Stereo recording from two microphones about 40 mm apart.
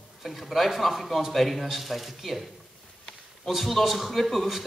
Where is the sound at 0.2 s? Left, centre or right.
Centre.